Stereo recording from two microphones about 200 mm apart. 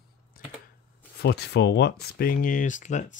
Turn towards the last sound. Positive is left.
turn(degrees=35)  # may be behind; listen again after turning